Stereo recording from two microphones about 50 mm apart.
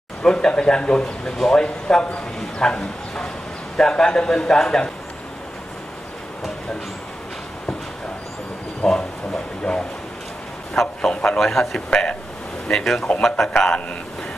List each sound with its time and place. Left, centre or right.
0.2 s speech: centre
8.8 s speech: centre
11.0 s a man's voice: centre
11.9 s speech: centre
12.6 s a man's voice: centre